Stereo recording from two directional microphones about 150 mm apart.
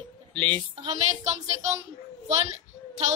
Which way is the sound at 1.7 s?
45° right (ahead or behind).